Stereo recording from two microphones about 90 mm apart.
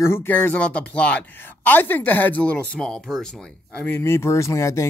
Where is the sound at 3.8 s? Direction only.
25° left (ahead or behind).